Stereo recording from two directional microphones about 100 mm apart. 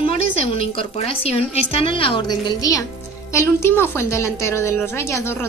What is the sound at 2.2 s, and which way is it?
Speech, 40° left (ahead or behind).